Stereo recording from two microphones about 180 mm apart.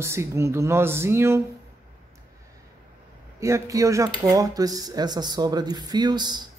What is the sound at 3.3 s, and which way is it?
A woman's voice, 15° right (ahead or behind).